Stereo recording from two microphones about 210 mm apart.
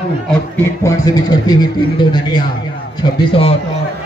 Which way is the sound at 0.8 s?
15° left (ahead or behind).